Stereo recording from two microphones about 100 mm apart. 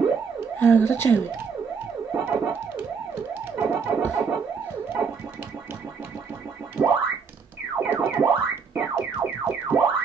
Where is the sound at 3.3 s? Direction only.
20° right (ahead or behind).